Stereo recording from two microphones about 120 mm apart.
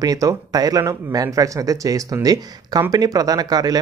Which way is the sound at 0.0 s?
30° right (ahead or behind).